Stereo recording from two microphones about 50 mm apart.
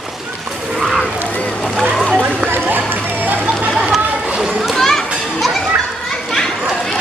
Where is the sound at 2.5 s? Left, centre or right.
Right.